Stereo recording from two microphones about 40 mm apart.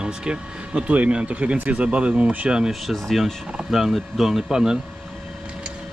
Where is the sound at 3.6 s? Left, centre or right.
Centre.